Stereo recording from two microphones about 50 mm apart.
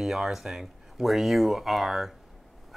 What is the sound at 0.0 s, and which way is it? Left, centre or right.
Speech, centre.